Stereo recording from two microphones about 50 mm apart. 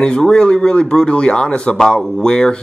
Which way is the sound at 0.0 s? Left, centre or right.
Centre.